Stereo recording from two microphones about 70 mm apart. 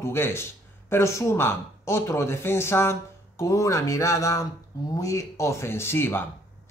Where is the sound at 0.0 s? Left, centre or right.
Left.